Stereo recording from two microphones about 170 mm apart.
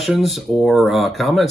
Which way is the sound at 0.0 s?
Centre (ahead or behind).